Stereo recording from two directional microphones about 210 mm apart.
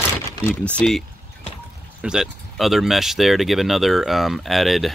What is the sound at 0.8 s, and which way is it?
Speech, 5° left (ahead or behind).